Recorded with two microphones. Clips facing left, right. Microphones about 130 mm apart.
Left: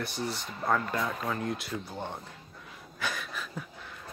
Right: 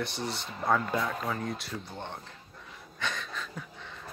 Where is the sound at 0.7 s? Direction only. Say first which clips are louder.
Right 1 dB; centre (ahead or behind).